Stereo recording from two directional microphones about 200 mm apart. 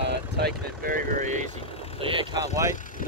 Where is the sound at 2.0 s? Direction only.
25° right (ahead or behind).